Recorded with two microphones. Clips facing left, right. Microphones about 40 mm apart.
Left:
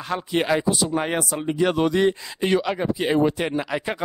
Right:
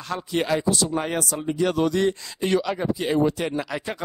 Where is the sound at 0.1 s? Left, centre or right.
Left.